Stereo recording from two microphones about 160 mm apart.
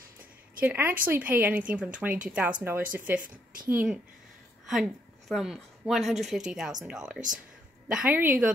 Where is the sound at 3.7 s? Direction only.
5° right (ahead or behind).